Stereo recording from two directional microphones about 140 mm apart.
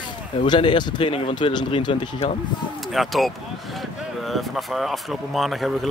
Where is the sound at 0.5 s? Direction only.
35° left (ahead or behind).